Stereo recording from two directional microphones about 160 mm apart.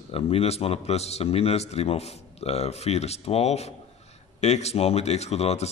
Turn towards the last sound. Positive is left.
turn(degrees=40)  # may be behind; listen again after turning